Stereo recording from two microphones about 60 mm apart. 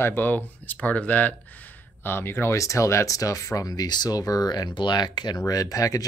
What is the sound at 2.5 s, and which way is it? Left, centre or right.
Speech, left.